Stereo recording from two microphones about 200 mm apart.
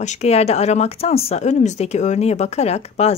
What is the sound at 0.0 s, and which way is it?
Speech, 35° left (ahead or behind).